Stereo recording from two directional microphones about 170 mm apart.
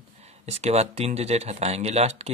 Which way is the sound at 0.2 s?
40° right (ahead or behind).